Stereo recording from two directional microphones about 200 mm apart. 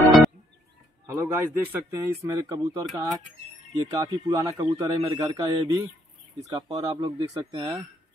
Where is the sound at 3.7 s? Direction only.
15° right (ahead or behind).